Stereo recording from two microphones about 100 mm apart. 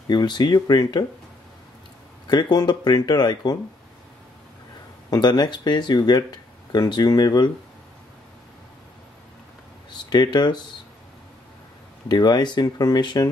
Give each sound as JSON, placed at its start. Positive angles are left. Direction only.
{"t": 0.1, "sound": "speech", "side_deg": 45}
{"t": 2.2, "sound": "speech", "side_deg": 45}
{"t": 5.1, "sound": "speech", "side_deg": 45}
{"t": 10.0, "sound": "speech", "side_deg": 45}
{"t": 12.1, "sound": "speech", "side_deg": 45}